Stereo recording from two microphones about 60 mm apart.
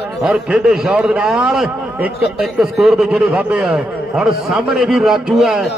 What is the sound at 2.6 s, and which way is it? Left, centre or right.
A man's voice, centre.